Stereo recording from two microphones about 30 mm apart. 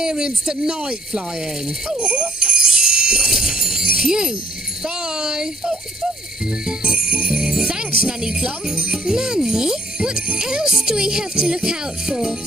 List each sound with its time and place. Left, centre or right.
0.0 s speech: right
0.7 s speech: right
2.4 s music: right
3.3 s speech: centre
6.6 s jingle bell: right
7.5 s music: centre
8.7 s speech: right
9.0 s speech: right